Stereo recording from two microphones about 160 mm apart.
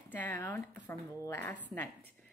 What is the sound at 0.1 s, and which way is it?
A woman's voice, 10° left (ahead or behind).